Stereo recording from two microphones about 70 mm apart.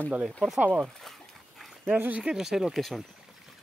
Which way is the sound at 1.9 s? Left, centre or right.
Right.